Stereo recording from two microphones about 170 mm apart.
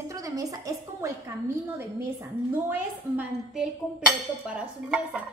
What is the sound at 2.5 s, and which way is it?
A woman's voice, 10° right (ahead or behind).